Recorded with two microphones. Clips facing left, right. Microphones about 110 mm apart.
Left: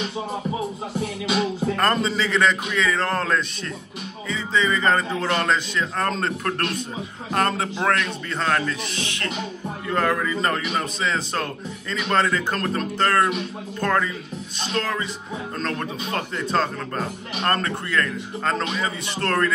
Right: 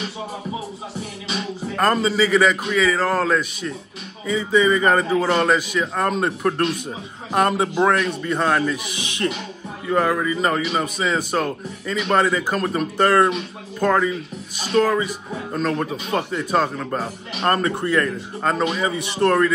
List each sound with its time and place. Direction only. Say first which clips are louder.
1.8 s a man's voice: right 6 dB; 5° right (ahead or behind)